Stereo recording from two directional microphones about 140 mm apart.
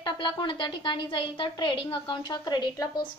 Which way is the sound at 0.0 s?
35° left (ahead or behind).